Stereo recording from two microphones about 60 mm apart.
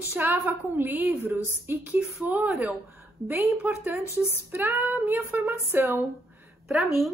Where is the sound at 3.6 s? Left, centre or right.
Right.